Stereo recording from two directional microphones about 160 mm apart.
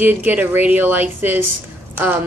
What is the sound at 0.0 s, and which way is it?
A woman's voice, 10° right (ahead or behind).